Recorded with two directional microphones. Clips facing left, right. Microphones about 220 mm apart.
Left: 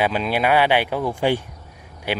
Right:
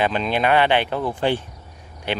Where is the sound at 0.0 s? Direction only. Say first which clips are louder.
Even; 10° left (ahead or behind).